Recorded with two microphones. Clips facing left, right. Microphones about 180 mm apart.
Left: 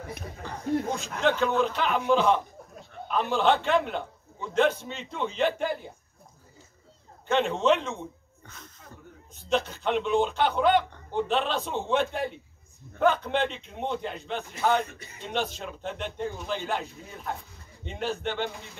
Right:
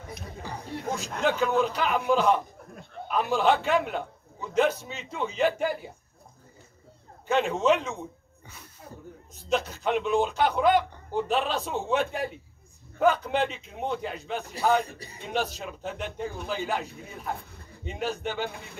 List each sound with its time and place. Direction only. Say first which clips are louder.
0.5 s a man's voice: left 5 dB; 10° right (ahead or behind)
7.2 s a man's voice: even; 5° right (ahead or behind)
14.9 s a man's voice: right 3 dB; 35° right (ahead or behind)
15.2 s a man's voice: right 1 dB; 5° right (ahead or behind)